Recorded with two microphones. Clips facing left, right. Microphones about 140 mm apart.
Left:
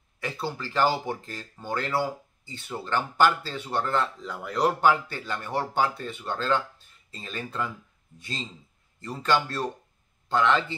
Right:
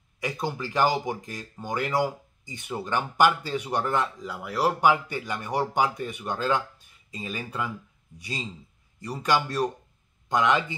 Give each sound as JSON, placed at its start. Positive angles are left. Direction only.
{"t": 0.2, "sound": "a man's voice", "side_deg": -15}